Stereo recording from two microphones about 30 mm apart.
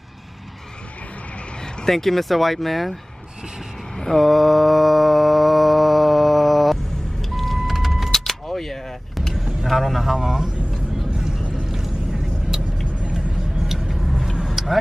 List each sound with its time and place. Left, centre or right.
1.9 s speech: centre
4.0 s mantra: centre
8.1 s vehicle: centre
9.4 s vehicle: right
9.7 s a sound: centre
10.1 s vehicle: right
11.6 s a sound: centre
14.0 s vehicle: centre